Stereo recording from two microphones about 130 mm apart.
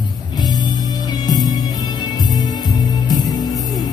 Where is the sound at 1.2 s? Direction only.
30° left (ahead or behind).